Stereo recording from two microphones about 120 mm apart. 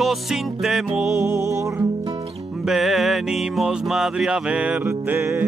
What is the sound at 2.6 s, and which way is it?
Music, centre (ahead or behind).